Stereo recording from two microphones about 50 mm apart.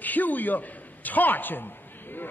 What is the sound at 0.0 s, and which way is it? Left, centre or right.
A man's voice, left.